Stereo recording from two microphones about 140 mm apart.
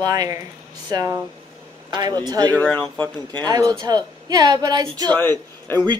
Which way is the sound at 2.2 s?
30° right (ahead or behind).